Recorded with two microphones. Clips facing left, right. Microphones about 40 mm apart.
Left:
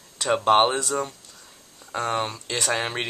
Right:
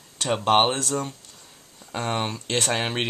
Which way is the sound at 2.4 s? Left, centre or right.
Right.